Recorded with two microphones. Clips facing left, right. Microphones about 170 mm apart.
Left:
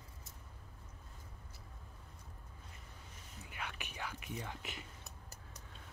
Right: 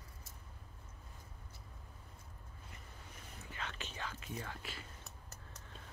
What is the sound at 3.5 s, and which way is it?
Whispering, 10° left (ahead or behind).